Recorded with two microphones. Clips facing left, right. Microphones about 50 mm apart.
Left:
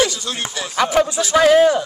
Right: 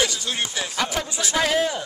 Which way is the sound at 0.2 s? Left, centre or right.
Centre.